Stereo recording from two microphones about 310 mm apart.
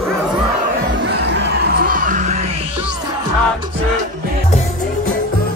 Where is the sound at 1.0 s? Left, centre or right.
Right.